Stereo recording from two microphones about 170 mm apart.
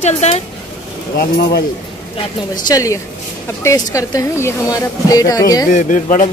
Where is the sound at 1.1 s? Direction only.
65° left (ahead or behind).